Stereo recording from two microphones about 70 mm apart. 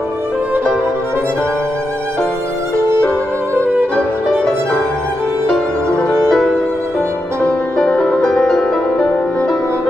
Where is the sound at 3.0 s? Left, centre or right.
Centre.